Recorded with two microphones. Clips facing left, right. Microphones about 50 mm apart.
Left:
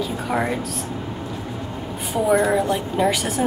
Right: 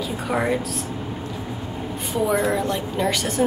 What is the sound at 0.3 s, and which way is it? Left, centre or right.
Speech, centre.